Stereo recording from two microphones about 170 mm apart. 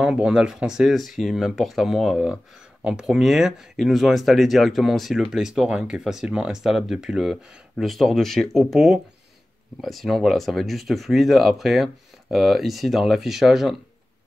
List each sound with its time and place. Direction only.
0.0 s speech: 5° right (ahead or behind)